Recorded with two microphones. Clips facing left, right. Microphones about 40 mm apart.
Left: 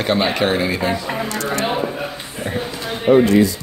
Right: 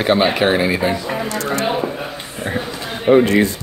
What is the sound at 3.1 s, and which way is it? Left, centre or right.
Speech, right.